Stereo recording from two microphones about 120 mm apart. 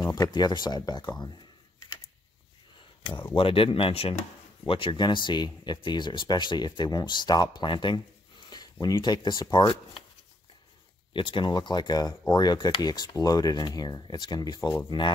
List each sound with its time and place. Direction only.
0.2 s speech: 35° left (ahead or behind)
1.2 s a sound: 40° left (ahead or behind)
3.3 s speech: 50° left (ahead or behind)
8.5 s a sound: 35° left (ahead or behind)
8.8 s speech: 35° left (ahead or behind)
11.1 s speech: 45° left (ahead or behind)